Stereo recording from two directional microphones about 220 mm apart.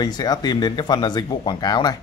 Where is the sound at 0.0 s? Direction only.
20° left (ahead or behind).